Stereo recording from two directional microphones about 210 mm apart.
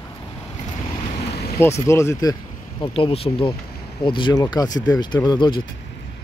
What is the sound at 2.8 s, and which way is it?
Speech, 25° left (ahead or behind).